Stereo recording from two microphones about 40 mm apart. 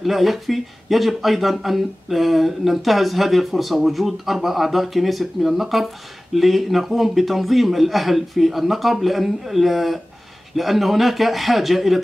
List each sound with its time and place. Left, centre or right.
0.0 s speech: centre